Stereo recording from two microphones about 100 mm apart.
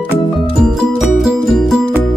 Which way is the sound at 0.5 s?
5° right (ahead or behind).